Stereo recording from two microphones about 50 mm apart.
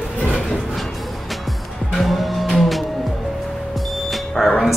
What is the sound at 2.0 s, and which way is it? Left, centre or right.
Cattle, centre.